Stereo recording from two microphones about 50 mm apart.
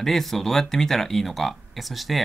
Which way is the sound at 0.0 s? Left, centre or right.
Centre.